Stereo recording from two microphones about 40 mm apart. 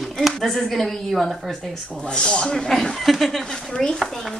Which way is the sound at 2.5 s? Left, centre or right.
Centre.